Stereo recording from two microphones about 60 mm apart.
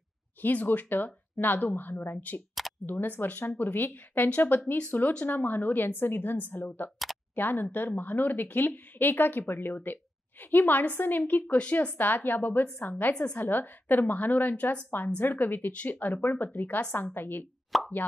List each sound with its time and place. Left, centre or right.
0.4 s speech: left
17.7 s plop: centre